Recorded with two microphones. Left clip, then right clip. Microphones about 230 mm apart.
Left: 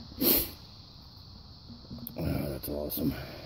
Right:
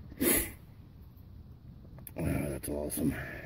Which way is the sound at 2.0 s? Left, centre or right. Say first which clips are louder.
Even; centre.